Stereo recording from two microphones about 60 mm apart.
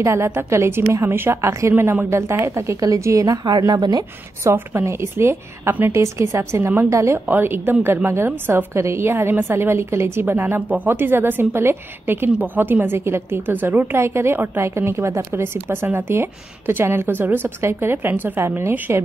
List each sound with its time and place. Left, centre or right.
0.0 s a woman's voice: right
1.8 s a woman's voice: right
2.8 s a woman's voice: right
4.5 s a woman's voice: right
5.9 s a woman's voice: right
6.9 s speech: right
7.2 s a woman's voice: right
8.7 s a woman's voice: right
13.9 s a woman's voice: right
18.9 s a woman's voice: right